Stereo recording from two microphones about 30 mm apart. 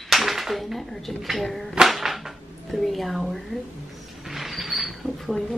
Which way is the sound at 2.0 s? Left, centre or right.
Centre.